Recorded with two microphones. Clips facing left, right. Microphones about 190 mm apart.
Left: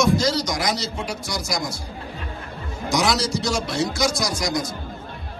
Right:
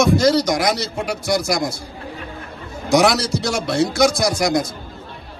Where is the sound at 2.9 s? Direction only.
60° right (ahead or behind).